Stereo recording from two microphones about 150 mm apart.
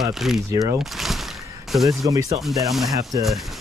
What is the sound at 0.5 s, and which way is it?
Speech, 25° right (ahead or behind).